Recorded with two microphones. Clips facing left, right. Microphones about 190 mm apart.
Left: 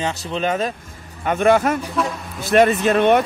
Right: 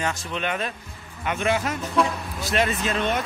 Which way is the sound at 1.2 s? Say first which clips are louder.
Left 8 dB; 50° left (ahead or behind).